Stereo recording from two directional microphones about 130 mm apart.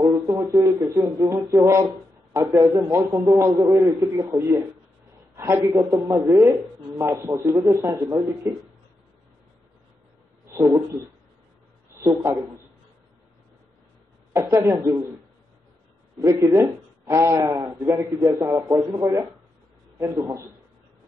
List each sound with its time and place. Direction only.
0.0 s a man's voice: 25° right (ahead or behind)
10.4 s a sound: 25° right (ahead or behind)
12.0 s speech: 20° right (ahead or behind)
14.3 s speech: 20° right (ahead or behind)
16.2 s speech: 25° right (ahead or behind)